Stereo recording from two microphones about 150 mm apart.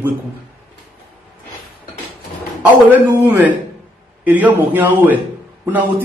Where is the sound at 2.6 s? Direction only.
10° right (ahead or behind).